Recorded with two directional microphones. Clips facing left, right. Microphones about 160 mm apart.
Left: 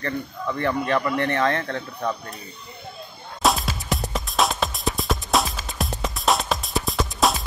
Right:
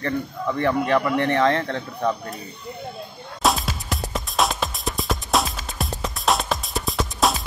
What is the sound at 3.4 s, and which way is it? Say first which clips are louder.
Music: even; centre (ahead or behind).